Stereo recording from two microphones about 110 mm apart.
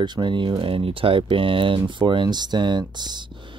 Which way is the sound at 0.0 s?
45° right (ahead or behind).